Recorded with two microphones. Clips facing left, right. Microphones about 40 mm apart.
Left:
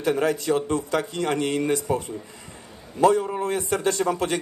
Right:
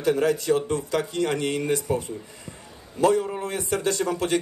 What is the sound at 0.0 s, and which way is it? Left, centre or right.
A man's voice, left.